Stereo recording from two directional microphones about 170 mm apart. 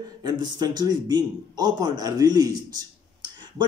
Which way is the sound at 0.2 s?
25° right (ahead or behind).